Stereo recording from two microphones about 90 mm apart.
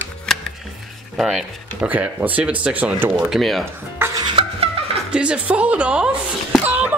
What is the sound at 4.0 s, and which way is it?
Music, 25° right (ahead or behind).